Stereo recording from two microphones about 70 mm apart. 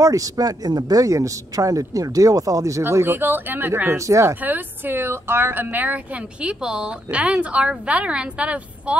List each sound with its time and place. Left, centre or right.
0.0 s speech: right
2.8 s speech: right
4.0 s speech: right
4.4 s speech: right
6.4 s a woman's voice: centre